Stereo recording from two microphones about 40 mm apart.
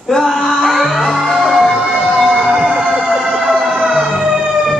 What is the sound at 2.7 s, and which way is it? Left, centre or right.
Emergency vehicle, centre.